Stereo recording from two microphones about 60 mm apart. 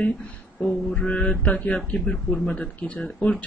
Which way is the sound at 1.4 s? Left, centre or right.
Left.